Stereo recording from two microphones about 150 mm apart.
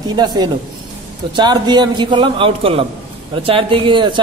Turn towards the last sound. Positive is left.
turn(degrees=-30)  # may be behind; listen again after turning